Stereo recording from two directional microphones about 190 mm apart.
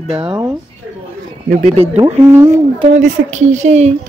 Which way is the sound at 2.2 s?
15° right (ahead or behind).